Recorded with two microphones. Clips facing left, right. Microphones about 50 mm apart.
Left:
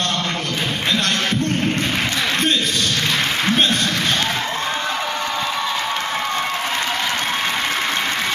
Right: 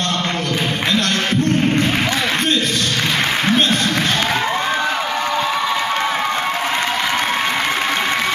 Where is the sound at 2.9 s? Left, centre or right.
Centre.